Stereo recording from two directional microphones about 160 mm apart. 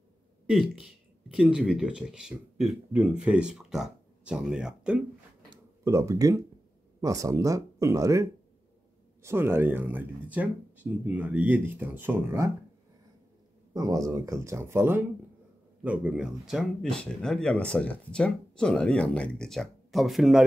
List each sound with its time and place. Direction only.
0.5 s speech: centre (ahead or behind)
5.9 s speech: 20° right (ahead or behind)
13.7 s speech: 20° right (ahead or behind); by 20.4 s centre (ahead or behind)